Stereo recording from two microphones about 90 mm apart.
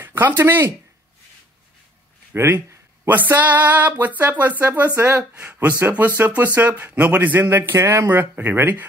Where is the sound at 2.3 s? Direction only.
25° right (ahead or behind).